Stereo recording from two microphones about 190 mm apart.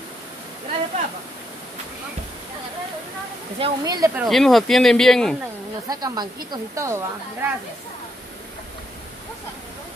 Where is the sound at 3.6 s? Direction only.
20° right (ahead or behind).